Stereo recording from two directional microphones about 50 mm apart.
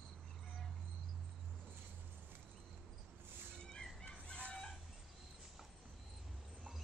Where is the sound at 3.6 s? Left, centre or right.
Centre.